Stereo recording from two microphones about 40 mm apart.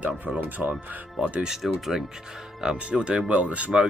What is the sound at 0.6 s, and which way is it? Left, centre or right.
Speech, right.